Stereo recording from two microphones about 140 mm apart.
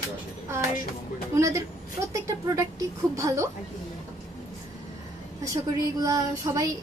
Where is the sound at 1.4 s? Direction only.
20° right (ahead or behind).